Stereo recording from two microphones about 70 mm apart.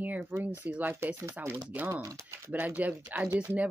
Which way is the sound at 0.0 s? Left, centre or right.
Right.